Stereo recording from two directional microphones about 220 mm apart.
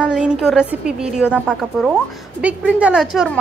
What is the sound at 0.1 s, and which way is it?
A woman's voice, 5° right (ahead or behind).